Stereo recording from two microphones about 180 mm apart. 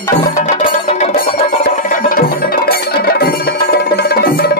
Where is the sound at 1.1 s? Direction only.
50° left (ahead or behind).